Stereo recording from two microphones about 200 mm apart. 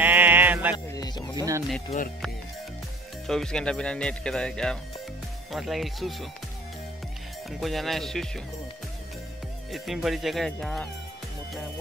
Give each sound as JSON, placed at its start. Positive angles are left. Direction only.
{"t": 0.0, "sound": "music", "side_deg": -10}
{"t": 0.9, "sound": "music", "side_deg": 20}
{"t": 1.3, "sound": "speech", "side_deg": -20}
{"t": 3.3, "sound": "speech", "side_deg": 5}
{"t": 7.6, "sound": "speech", "side_deg": 0}
{"t": 9.7, "sound": "speech", "side_deg": 0}